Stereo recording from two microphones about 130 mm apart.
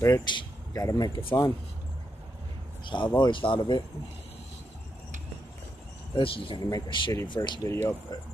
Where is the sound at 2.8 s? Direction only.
40° left (ahead or behind).